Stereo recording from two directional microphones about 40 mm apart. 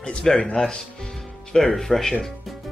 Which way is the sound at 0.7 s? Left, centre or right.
Centre.